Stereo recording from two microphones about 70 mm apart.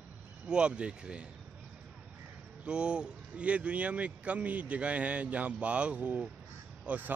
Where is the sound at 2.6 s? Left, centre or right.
Centre.